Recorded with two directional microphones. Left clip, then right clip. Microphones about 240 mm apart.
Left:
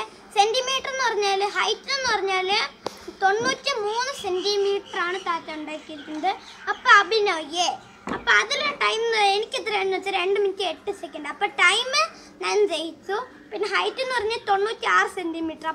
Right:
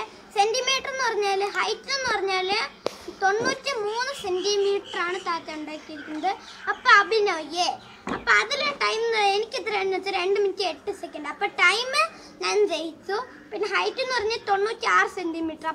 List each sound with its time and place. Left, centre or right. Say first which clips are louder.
0.0 s a child's voice: left 2 dB; centre